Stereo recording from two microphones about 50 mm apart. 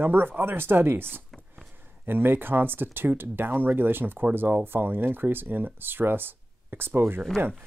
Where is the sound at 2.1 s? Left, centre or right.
Right.